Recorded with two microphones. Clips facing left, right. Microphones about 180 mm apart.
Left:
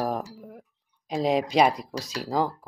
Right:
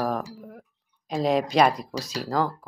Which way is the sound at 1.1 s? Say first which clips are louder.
Right 1 dB; 15° left (ahead or behind).